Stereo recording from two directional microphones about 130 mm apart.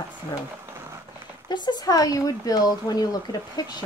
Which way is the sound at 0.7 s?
20° right (ahead or behind).